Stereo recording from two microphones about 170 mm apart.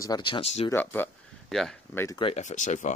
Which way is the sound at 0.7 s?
10° left (ahead or behind).